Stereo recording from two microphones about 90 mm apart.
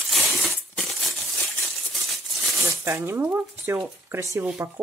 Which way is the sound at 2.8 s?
30° right (ahead or behind).